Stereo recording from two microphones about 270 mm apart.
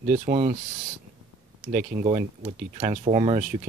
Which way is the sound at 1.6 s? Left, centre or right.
Right.